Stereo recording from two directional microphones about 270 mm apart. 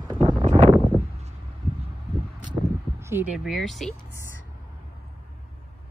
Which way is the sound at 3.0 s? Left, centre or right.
Centre.